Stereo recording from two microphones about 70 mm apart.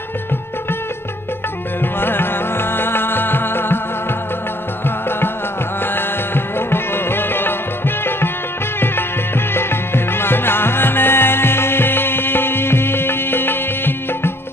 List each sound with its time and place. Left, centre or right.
1.8 s music: left
5.9 s music: left